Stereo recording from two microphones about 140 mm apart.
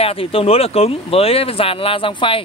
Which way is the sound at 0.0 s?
45° left (ahead or behind).